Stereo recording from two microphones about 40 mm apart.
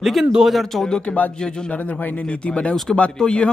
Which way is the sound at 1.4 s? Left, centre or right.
Left.